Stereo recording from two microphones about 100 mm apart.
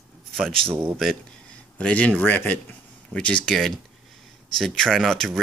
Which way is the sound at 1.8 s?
10° left (ahead or behind).